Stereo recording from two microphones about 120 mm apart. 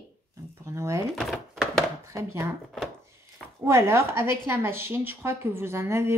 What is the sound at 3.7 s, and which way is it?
A woman's voice, 20° right (ahead or behind).